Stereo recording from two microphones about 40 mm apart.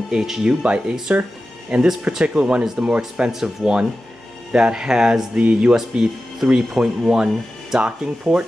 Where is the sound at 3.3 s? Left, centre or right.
Centre.